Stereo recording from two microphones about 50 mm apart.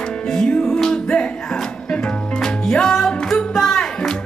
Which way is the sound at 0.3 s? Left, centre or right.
Centre.